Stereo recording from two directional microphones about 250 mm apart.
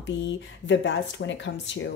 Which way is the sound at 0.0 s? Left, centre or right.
Left.